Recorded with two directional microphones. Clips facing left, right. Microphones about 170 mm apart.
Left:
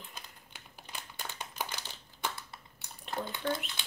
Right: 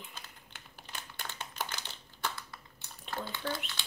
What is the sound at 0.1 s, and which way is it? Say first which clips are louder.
Crumpling: even; 10° left (ahead or behind).